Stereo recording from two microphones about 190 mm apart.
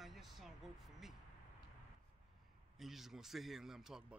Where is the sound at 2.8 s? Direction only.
Centre (ahead or behind).